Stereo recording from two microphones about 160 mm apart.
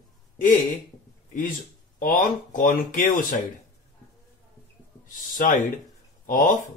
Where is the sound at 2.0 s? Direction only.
60° left (ahead or behind).